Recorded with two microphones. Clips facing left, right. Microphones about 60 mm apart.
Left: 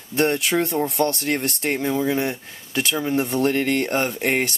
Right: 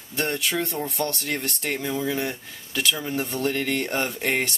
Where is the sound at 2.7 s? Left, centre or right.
Left.